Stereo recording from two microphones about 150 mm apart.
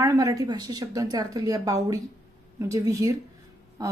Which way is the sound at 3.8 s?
25° right (ahead or behind).